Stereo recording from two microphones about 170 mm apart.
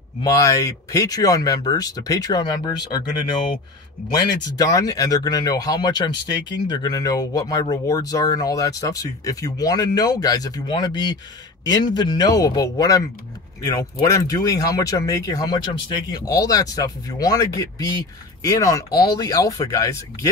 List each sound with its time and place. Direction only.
0.2 s speech: 20° left (ahead or behind)
4.1 s speech: 20° left (ahead or behind)
14.0 s speech: 20° left (ahead or behind)